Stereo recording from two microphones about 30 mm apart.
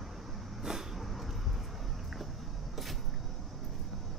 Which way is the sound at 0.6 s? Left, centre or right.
Centre.